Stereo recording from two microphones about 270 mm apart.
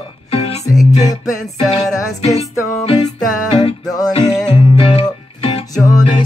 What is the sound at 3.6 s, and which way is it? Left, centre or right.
Music, centre.